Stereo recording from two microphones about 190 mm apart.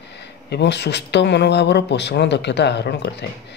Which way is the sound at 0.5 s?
65° left (ahead or behind).